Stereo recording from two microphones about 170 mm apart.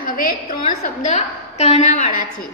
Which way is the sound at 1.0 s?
40° left (ahead or behind).